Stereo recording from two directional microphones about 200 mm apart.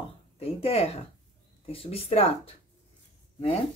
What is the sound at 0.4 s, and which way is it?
Speech, 30° left (ahead or behind).